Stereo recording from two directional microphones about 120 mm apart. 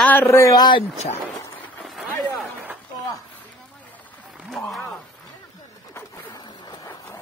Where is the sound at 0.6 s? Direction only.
40° left (ahead or behind).